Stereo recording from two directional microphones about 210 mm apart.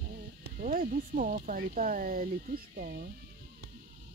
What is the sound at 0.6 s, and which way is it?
Speech, 40° right (ahead or behind).